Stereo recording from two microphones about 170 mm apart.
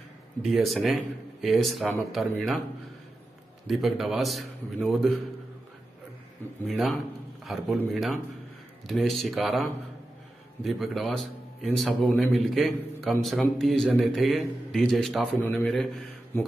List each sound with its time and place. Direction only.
0.4 s a man's voice: centre (ahead or behind)
3.6 s a man's voice: centre (ahead or behind)
6.7 s a man's voice: centre (ahead or behind)